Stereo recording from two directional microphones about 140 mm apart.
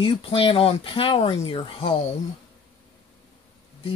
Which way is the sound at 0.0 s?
40° left (ahead or behind).